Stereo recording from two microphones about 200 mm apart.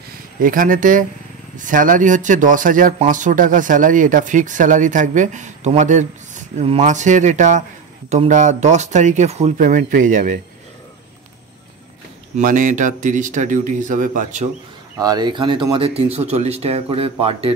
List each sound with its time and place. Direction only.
0.4 s speech: 45° right (ahead or behind)
12.4 s speech: 40° right (ahead or behind)
15.0 s speech: 20° right (ahead or behind)